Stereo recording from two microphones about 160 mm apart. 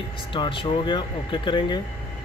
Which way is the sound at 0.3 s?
30° left (ahead or behind).